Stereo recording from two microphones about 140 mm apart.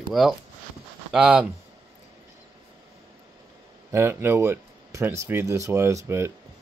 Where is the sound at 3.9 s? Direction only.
20° right (ahead or behind).